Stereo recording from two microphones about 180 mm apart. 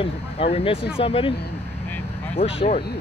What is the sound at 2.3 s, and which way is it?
Speech, 30° left (ahead or behind).